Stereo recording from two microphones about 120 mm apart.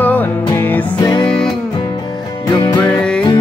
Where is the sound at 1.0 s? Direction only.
40° left (ahead or behind).